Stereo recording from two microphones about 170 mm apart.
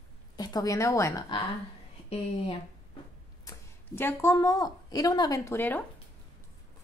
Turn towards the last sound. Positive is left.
turn(degrees=10)  # may be behind; listen again after turning